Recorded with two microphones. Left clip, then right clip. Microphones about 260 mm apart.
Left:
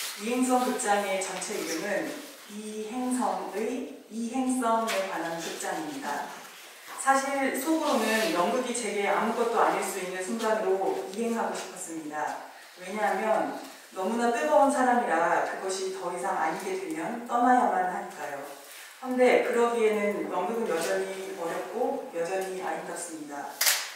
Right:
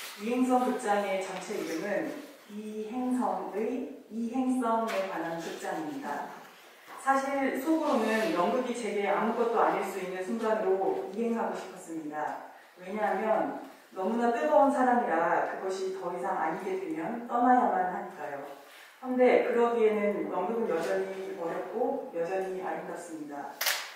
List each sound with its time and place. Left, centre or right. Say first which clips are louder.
0.0 s speech: left 2 dB; centre
3.2 s a woman's voice: left 2 dB; centre
3.5 s a woman's voice: left 1 dB; centre